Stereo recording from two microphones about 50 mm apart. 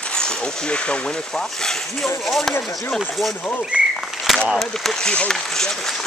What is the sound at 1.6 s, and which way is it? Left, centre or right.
Speech, centre.